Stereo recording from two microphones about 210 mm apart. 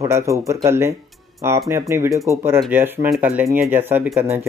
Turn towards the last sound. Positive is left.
turn(degrees=-10)  # may be behind; listen again after turning